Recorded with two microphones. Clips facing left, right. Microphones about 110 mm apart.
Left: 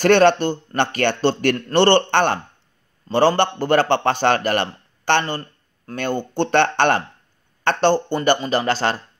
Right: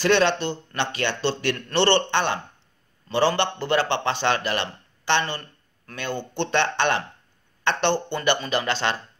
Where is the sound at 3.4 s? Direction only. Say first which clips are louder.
Left 5 dB; 45° left (ahead or behind).